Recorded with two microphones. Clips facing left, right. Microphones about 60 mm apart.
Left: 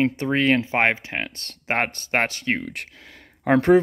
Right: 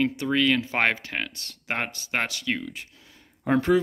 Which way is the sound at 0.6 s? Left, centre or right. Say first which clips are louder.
Left 3 dB; left.